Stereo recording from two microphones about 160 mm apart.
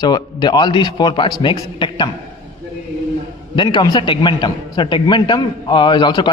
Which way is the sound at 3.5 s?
30° left (ahead or behind).